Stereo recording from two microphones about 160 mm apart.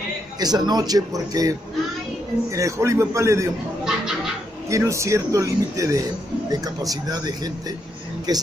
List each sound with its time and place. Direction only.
0.4 s a man's voice: 25° right (ahead or behind)
3.8 s a sound: 5° right (ahead or behind)
4.6 s speech: 20° right (ahead or behind)